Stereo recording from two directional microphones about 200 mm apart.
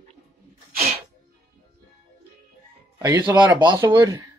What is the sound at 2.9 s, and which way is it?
Speech, 15° right (ahead or behind).